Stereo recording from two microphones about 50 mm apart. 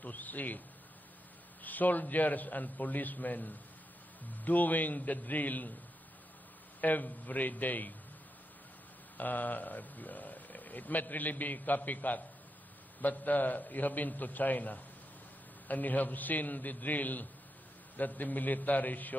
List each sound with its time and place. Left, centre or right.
0.0 s a man's voice: left
1.6 s speech: left
6.8 s speech: left
9.2 s speech: left